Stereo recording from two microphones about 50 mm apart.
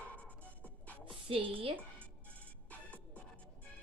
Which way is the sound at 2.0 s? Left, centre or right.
Left.